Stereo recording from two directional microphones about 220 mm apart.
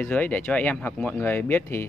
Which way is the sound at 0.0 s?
5° left (ahead or behind).